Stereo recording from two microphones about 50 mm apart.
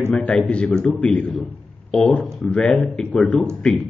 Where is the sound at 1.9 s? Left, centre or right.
Centre.